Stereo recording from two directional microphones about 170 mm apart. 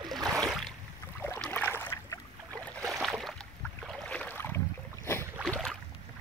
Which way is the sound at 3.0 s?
Centre (ahead or behind).